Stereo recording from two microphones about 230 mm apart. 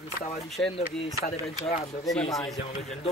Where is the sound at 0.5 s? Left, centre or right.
Centre.